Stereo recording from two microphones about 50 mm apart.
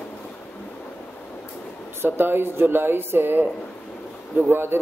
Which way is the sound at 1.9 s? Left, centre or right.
Right.